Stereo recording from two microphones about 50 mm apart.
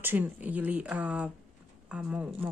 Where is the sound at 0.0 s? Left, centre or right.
Right.